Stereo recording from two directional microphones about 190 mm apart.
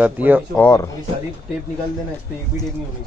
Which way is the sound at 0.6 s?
15° left (ahead or behind).